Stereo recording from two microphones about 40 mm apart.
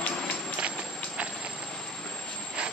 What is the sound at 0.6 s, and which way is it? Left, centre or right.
Clip-clop, right.